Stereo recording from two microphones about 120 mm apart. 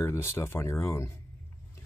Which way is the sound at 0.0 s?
20° left (ahead or behind).